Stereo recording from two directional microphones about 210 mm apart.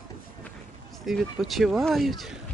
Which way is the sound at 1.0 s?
Centre (ahead or behind).